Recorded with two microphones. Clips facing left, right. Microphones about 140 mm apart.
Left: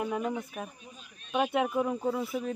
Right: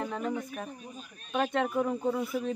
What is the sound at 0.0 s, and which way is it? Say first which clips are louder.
Speech: left 1 dB; 10° left (ahead or behind).